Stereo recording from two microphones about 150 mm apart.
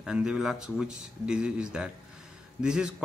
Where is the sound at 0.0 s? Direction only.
5° right (ahead or behind).